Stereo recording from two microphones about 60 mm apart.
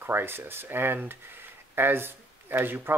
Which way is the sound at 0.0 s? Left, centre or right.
Right.